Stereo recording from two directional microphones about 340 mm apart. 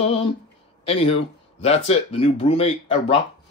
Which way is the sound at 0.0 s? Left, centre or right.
Centre.